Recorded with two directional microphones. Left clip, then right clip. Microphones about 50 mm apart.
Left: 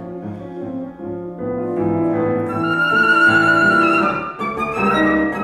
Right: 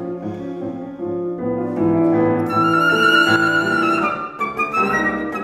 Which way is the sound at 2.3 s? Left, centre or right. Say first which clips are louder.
Right 2 dB; left.